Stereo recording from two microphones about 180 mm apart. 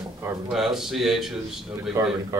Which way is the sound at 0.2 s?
10° right (ahead or behind).